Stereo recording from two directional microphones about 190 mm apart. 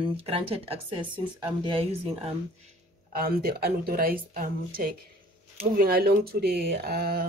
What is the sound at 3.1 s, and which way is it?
Speech, 50° right (ahead or behind).